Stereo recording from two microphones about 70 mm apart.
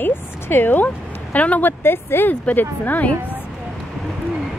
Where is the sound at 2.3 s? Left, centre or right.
Left.